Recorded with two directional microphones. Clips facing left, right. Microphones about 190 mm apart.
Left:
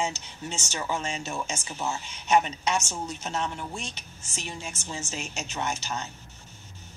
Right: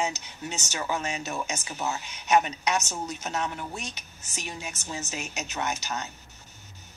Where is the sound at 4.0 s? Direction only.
30° left (ahead or behind).